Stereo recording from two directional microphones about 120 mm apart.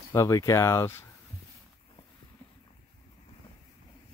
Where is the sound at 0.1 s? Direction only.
25° left (ahead or behind).